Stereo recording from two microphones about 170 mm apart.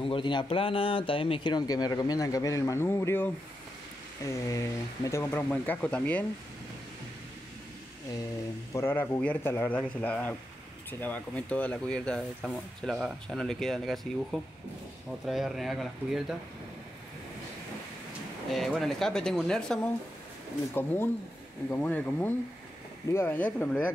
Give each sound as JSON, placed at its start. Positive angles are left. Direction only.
{"t": 0.0, "sound": "speech", "side_deg": 30}
{"t": 8.7, "sound": "speech", "side_deg": 10}
{"t": 18.5, "sound": "speech", "side_deg": 0}